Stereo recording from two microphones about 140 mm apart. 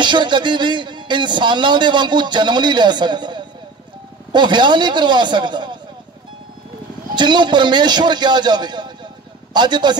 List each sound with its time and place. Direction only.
0.0 s speech: 35° right (ahead or behind)
7.2 s speech: 35° right (ahead or behind)